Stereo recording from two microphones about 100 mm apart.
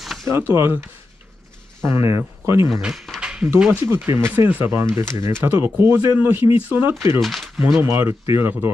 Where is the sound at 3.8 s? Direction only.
30° right (ahead or behind).